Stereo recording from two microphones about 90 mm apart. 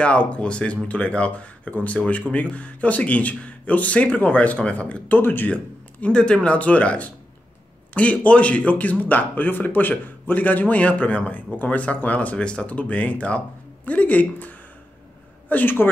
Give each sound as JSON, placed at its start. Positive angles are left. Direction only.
{"t": 0.0, "sound": "speech", "side_deg": 15}